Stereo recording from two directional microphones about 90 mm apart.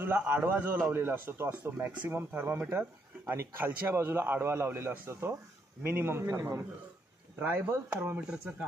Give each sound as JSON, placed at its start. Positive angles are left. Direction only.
{"t": 0.3, "sound": "a man's voice", "side_deg": -25}
{"t": 7.3, "sound": "a man's voice", "side_deg": -20}